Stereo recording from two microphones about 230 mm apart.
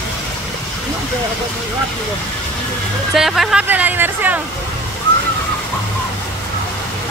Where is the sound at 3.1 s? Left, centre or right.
Centre.